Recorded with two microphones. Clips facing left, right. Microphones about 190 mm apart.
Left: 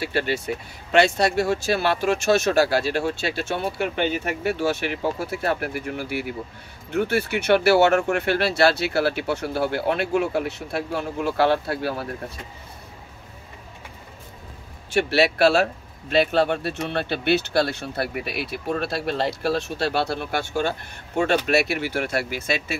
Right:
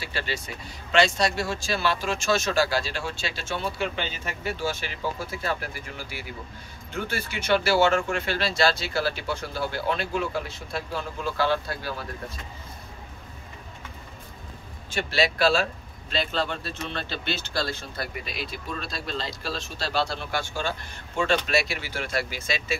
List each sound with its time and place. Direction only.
0.0 s speech: 60° left (ahead or behind)
14.9 s speech: 65° left (ahead or behind)